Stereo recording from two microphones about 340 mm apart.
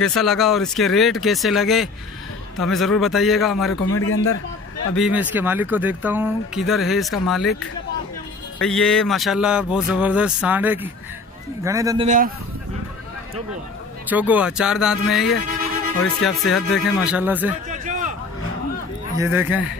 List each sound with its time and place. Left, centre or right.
0.0 s speech: centre
3.9 s speech: left
4.9 s speech: centre
8.5 s a man's voice: centre
14.0 s speech: centre
17.6 s a sound: right
19.1 s a man's voice: centre